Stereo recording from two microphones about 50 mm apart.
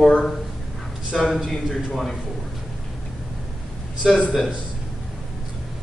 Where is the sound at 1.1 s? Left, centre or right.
Centre.